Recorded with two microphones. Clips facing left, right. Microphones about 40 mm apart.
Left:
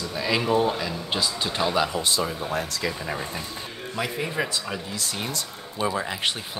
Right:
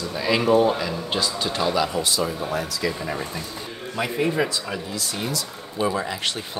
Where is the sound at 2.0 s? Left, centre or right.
Left.